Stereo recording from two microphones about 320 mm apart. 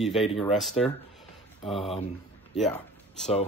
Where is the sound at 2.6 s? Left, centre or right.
Centre.